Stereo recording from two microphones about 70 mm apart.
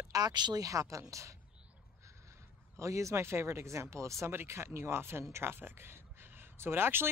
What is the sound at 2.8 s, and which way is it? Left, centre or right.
Speech, right.